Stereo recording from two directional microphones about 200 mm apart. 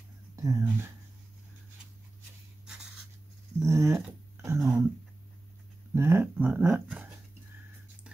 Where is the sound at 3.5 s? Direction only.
15° right (ahead or behind).